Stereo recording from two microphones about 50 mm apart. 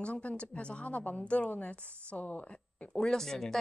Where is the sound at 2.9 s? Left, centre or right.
Centre.